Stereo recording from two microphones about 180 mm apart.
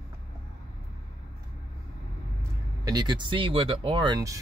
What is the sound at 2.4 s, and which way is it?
Speech, 20° right (ahead or behind).